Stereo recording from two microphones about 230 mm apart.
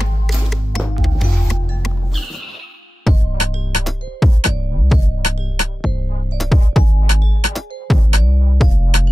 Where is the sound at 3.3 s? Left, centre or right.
Right.